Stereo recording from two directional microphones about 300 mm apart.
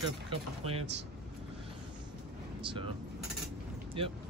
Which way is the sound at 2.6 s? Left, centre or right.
Centre.